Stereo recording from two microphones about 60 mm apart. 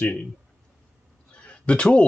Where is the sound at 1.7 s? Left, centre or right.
Centre.